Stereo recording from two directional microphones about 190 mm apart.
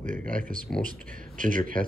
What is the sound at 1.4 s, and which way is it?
Speech, 45° right (ahead or behind).